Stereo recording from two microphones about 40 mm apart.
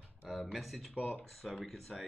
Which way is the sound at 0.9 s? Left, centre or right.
Left.